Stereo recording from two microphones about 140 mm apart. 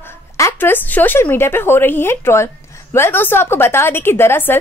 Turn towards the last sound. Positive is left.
turn(degrees=15)  # may be behind; listen again after turning